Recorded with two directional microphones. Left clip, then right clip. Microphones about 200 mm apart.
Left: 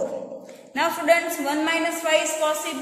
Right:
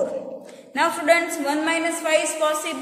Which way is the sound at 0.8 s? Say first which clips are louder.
Right 1 dB; 20° right (ahead or behind).